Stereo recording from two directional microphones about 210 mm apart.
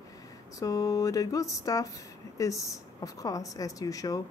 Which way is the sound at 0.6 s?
15° left (ahead or behind).